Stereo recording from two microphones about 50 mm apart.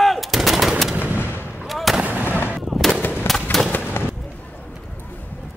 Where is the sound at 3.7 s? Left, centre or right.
Left.